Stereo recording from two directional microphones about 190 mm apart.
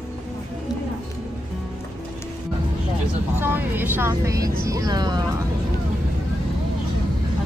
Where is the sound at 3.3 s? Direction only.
10° right (ahead or behind).